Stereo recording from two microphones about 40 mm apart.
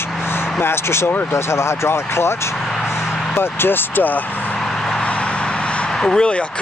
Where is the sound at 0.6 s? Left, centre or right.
Left.